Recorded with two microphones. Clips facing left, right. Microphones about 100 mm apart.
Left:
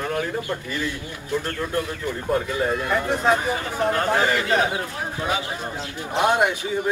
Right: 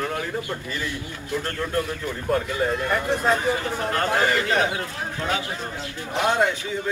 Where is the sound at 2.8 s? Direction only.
10° left (ahead or behind).